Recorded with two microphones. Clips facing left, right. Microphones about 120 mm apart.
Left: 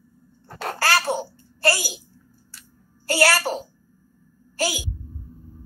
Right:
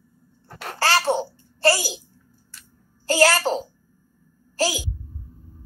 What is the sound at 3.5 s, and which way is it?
Speech, 25° right (ahead or behind).